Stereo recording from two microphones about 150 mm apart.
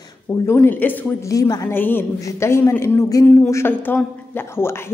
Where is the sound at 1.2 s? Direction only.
25° left (ahead or behind).